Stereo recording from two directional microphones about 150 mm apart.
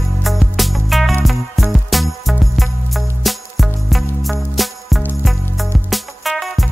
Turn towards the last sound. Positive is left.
turn(degrees=0)  # may be behind; listen again after turning